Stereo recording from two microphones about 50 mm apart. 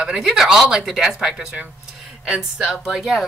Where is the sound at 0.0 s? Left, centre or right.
Centre.